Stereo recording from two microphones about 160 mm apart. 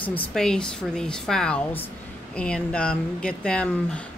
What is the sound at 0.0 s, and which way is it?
Speech, 10° left (ahead or behind).